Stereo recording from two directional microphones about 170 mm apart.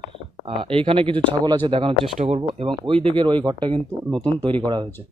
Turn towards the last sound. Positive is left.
turn(degrees=5)  # may be behind; listen again after turning